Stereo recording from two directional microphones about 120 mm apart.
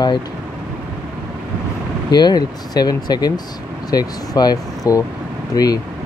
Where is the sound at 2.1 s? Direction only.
35° left (ahead or behind).